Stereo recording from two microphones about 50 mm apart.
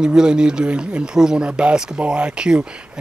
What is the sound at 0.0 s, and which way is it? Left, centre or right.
Speech, centre.